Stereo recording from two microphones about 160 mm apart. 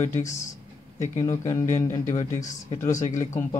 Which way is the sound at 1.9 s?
45° left (ahead or behind).